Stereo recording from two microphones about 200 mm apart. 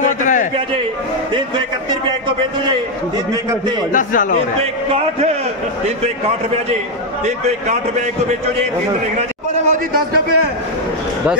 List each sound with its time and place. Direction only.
0.0 s a sound: 40° left (ahead or behind)
3.9 s speech: 40° left (ahead or behind)
4.6 s a man's voice: 30° right (ahead or behind)
9.7 s a man's voice: 50° right (ahead or behind)